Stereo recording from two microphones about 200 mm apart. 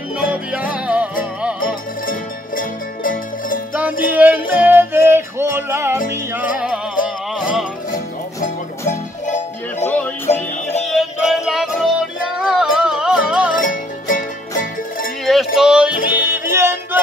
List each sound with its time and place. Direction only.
0.2 s music: 5° right (ahead or behind)
2.0 s music: 45° left (ahead or behind)
4.1 s music: 10° right (ahead or behind)
8.4 s music: 35° left (ahead or behind)
9.8 s music: 10° left (ahead or behind)
10.3 s music: 35° left (ahead or behind)
10.9 s music: centre (ahead or behind)
13.6 s music: 40° left (ahead or behind)
15.2 s music: centre (ahead or behind)